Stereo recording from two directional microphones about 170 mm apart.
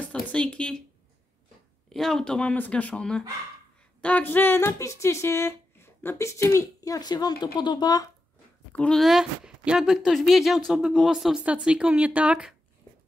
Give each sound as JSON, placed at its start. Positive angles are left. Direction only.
{"t": 0.0, "sound": "speech", "side_deg": 5}
{"t": 1.9, "sound": "speech", "side_deg": 0}
{"t": 8.7, "sound": "speech", "side_deg": 5}